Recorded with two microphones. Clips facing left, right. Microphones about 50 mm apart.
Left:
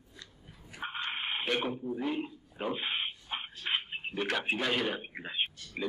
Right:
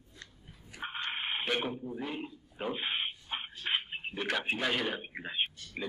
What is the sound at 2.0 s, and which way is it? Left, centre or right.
Dog, centre.